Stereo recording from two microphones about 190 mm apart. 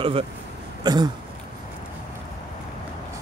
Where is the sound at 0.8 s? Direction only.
20° right (ahead or behind).